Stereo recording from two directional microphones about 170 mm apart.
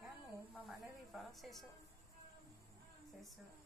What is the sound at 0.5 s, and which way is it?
A woman's voice, centre (ahead or behind).